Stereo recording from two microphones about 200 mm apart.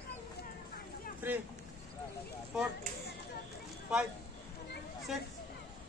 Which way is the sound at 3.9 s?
5° right (ahead or behind).